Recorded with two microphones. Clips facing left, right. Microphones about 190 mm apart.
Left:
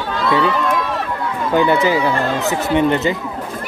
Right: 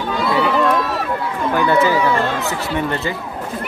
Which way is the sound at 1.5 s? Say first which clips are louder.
Left 1 dB; 15° left (ahead or behind).